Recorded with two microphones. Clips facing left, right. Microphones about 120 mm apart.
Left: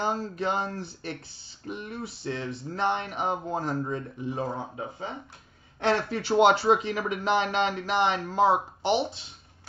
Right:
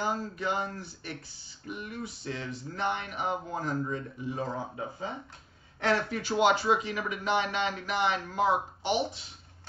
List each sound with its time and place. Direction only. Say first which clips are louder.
0.0 s speech: left 3 dB; 25° left (ahead or behind)
1.7 s speech: left 2 dB; 25° left (ahead or behind)